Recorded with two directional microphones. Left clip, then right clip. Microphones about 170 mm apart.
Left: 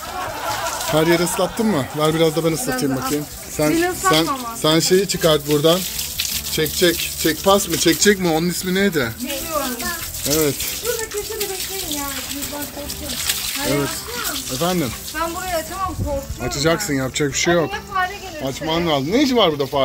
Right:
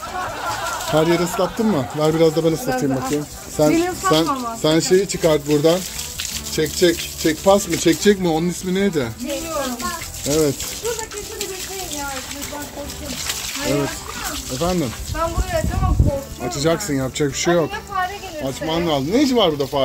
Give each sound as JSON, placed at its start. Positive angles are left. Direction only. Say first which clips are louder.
{"t": 0.2, "sound": "speech", "louder": "left 1 dB", "side_deg": 0}
{"t": 4.6, "sound": "speech", "louder": "even", "side_deg": -10}
{"t": 10.2, "sound": "speech", "louder": "right 1 dB", "side_deg": -10}
{"t": 14.6, "sound": "speech", "louder": "even", "side_deg": 0}
{"t": 16.4, "sound": "speech", "louder": "left 1 dB", "side_deg": -10}